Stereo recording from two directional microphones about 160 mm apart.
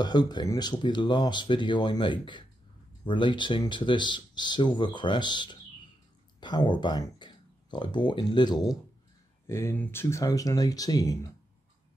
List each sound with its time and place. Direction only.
0.0 s speech: 25° left (ahead or behind)
9.5 s speech: 15° left (ahead or behind)